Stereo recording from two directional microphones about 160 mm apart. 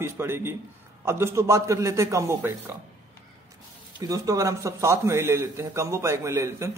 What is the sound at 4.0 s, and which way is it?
A man's voice, 20° right (ahead or behind).